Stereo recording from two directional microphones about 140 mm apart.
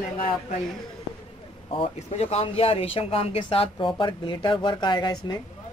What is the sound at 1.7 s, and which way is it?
Speech, 45° left (ahead or behind).